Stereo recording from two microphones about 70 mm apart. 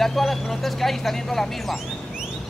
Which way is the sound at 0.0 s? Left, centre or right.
Centre.